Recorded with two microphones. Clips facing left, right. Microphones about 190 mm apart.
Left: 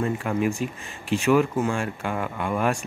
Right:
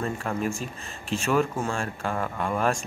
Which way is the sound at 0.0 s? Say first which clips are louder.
Left 4 dB; 15° left (ahead or behind).